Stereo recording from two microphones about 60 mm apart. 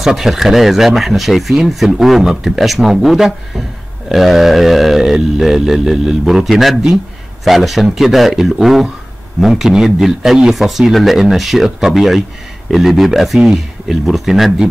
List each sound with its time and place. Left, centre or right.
0.0 s speech: centre